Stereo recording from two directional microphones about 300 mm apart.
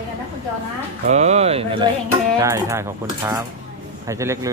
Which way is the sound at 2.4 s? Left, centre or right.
Centre.